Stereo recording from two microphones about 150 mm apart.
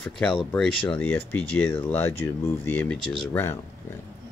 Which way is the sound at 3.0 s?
35° left (ahead or behind).